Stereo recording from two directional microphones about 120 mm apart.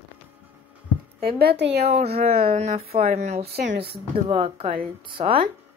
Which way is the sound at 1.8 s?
65° right (ahead or behind).